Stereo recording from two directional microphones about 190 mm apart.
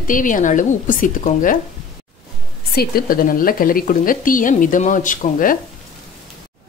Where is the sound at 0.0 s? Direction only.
45° left (ahead or behind).